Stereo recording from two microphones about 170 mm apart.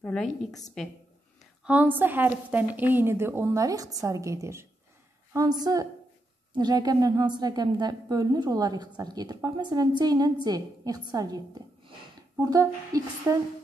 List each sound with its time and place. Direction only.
0.0 s a woman's voice: 5° left (ahead or behind); by 13.4 s 20° right (ahead or behind)